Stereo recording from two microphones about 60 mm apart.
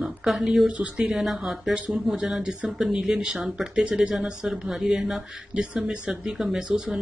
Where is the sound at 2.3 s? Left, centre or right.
Centre.